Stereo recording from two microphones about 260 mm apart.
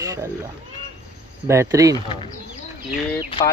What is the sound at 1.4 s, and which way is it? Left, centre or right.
Speech, centre.